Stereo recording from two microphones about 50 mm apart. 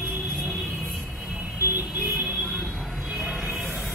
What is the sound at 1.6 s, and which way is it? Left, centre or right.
Music, right.